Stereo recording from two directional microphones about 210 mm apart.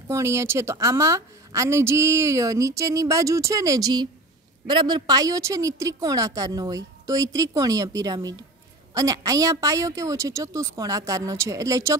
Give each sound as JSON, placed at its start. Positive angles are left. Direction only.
{"t": 0.1, "sound": "a woman's voice", "side_deg": -15}